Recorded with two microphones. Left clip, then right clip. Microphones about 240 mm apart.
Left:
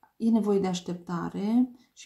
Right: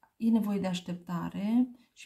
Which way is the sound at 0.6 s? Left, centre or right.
Right.